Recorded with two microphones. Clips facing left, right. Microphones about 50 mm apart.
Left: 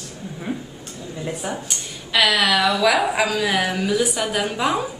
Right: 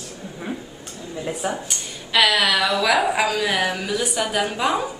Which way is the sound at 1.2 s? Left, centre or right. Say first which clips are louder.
Right 2 dB; centre.